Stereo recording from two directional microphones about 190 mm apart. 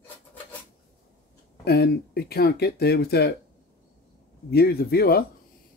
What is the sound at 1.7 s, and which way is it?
Speech, 60° left (ahead or behind).